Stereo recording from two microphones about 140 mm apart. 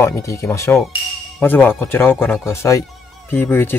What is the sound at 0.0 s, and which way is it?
Speech, 20° left (ahead or behind).